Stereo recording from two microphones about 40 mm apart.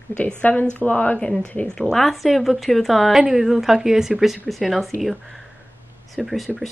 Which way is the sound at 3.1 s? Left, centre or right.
Centre.